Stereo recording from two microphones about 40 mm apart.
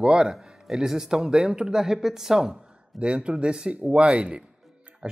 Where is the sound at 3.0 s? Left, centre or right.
Right.